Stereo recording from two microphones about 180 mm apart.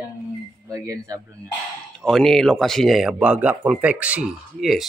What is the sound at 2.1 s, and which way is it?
Speech, centre (ahead or behind).